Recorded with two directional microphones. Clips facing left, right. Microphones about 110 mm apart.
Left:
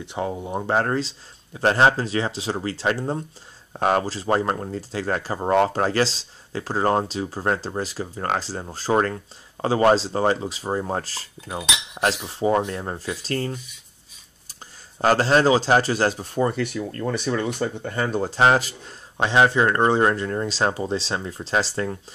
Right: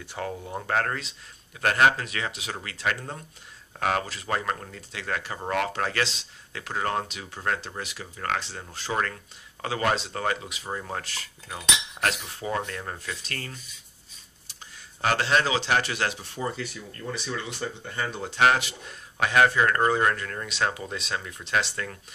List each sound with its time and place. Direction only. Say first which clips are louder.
0.0 s speech: left 6 dB; 20° left (ahead or behind)
11.5 s speech: left 3 dB; 20° left (ahead or behind)